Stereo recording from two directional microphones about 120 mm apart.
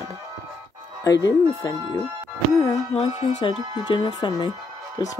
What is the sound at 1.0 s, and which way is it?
Speech, 30° left (ahead or behind).